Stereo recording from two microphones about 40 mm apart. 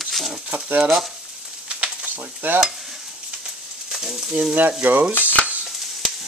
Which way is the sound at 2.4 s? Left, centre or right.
Right.